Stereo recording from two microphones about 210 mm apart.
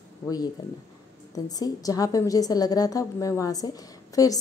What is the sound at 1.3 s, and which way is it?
A woman's voice, 15° left (ahead or behind).